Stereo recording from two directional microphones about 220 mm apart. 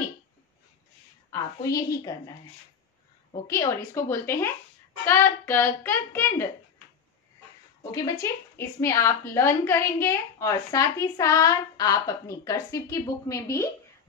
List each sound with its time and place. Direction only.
1.3 s a woman's voice: 15° left (ahead or behind)
3.4 s a woman's voice: 10° left (ahead or behind)
7.9 s a woman's voice: 15° left (ahead or behind)